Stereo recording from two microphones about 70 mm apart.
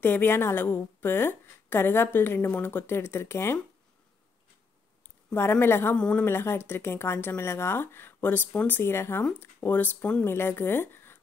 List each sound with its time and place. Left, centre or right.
0.0 s a woman's voice: left
5.3 s a woman's voice: left
5.9 s a woman's voice: centre
6.2 s a woman's voice: left